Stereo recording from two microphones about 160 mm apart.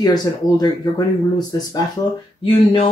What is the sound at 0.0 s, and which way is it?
Speech, 25° left (ahead or behind).